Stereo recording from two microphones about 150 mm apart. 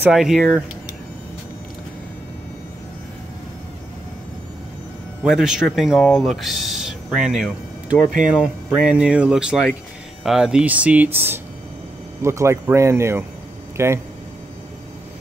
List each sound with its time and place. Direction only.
0.0 s speech: 5° right (ahead or behind)
5.2 s speech: 5° right (ahead or behind)